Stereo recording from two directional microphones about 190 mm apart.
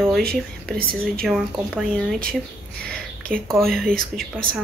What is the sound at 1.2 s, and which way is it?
Speech, centre (ahead or behind).